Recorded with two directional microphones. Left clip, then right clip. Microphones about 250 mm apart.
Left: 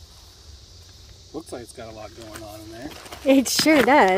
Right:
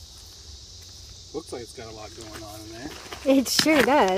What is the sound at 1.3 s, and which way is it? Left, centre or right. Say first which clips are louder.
Speech: even; left.